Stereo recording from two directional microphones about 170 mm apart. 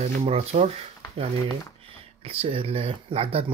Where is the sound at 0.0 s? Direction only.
35° right (ahead or behind).